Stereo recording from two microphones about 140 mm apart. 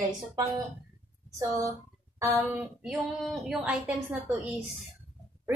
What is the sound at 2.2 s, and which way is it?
Speech, 20° right (ahead or behind).